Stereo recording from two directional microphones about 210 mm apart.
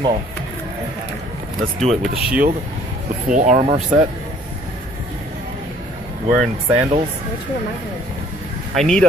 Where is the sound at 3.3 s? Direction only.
35° right (ahead or behind).